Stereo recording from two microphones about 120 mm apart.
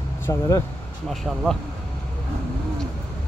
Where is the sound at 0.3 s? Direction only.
25° left (ahead or behind).